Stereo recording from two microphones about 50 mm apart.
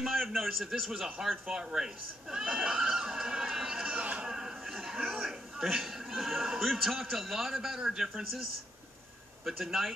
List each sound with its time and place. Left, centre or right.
0.1 s a man's voice: centre
2.3 s neigh: centre
3.9 s a sound: right
5.1 s a man's voice: centre
9.5 s a man's voice: centre